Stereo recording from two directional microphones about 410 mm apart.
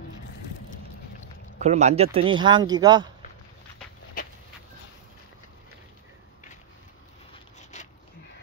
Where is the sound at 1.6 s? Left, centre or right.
Centre.